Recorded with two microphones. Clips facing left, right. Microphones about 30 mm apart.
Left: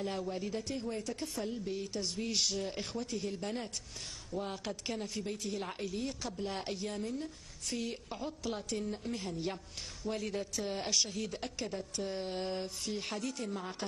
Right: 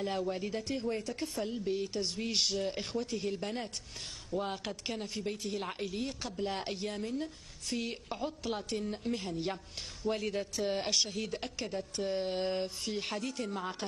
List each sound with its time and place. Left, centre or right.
0.0 s speech: centre
0.3 s speech: right
4.3 s speech: right
5.0 s speech: centre
5.9 s speech: right